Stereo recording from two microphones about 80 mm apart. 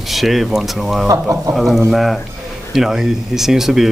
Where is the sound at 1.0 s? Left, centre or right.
Right.